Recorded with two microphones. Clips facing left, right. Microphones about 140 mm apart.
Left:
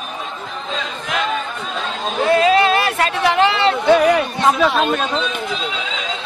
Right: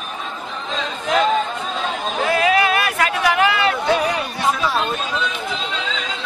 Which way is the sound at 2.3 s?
30° left (ahead or behind).